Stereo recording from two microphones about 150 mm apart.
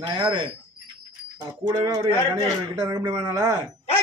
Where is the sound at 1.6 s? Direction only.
25° right (ahead or behind).